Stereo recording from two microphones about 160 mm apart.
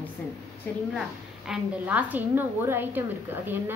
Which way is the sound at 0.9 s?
5° right (ahead or behind).